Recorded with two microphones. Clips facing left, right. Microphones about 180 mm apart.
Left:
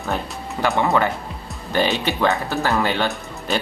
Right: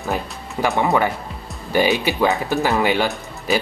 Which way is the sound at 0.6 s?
20° right (ahead or behind).